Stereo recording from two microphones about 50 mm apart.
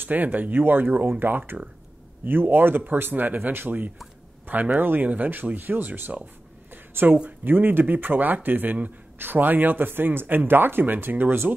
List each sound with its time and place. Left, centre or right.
0.0 s speech: right
6.7 s a sound: right
7.2 s speech: right